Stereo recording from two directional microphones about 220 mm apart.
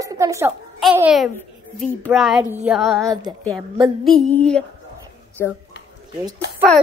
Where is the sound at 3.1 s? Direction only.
20° right (ahead or behind).